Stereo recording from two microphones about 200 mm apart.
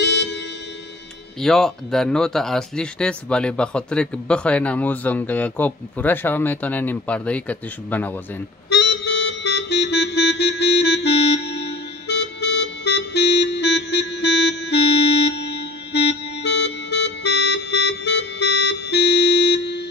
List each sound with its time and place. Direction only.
0.0 s music: 60° left (ahead or behind)
1.4 s speech: centre (ahead or behind)
8.6 s music: 55° left (ahead or behind)